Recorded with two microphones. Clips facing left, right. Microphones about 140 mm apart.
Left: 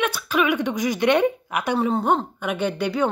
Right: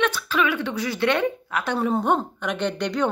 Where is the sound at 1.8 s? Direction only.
Centre (ahead or behind).